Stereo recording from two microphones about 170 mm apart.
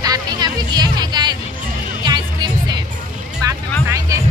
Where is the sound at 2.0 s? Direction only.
25° right (ahead or behind).